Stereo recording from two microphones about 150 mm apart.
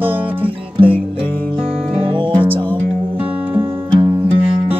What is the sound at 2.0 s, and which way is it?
Music, 35° right (ahead or behind).